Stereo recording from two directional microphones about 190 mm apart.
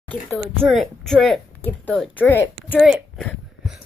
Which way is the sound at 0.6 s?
Centre (ahead or behind).